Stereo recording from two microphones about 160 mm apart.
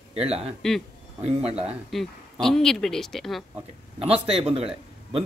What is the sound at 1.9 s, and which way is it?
Speech, centre (ahead or behind).